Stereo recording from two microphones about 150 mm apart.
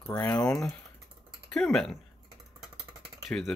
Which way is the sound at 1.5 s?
5° left (ahead or behind).